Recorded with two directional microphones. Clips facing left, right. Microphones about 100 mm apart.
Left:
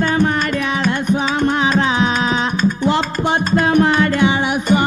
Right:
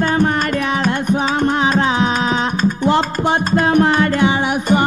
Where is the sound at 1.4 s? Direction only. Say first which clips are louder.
Even; 40° right (ahead or behind).